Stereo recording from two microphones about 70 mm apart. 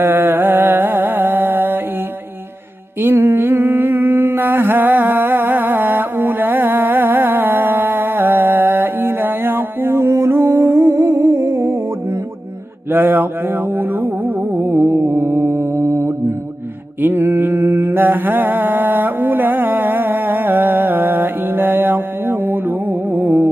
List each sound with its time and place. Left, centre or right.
0.0 s music: right
3.3 s a sound: right
12.9 s music: right
17.0 s mantra: right